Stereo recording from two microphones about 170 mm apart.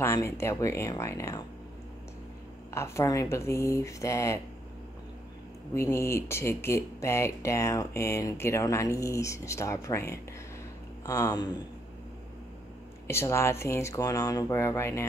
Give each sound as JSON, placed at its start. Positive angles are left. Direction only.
{"t": 0.0, "sound": "speech", "side_deg": 15}
{"t": 2.7, "sound": "speech", "side_deg": 15}
{"t": 5.8, "sound": "speech", "side_deg": 15}
{"t": 13.0, "sound": "speech", "side_deg": 15}